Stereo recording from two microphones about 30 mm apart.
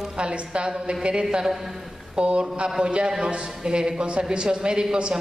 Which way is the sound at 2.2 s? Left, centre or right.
Right.